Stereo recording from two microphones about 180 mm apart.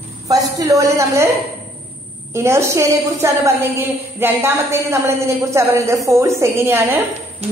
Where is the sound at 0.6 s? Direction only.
20° right (ahead or behind).